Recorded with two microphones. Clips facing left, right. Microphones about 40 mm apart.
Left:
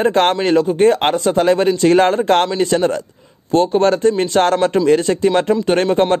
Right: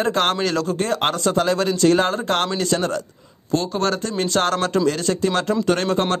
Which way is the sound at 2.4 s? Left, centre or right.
Left.